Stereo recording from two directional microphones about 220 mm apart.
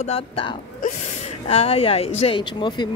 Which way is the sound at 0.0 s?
25° left (ahead or behind).